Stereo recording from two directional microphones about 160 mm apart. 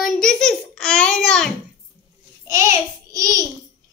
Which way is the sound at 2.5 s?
20° right (ahead or behind).